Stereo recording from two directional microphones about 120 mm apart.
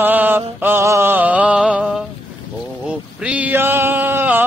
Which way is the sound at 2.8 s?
10° right (ahead or behind).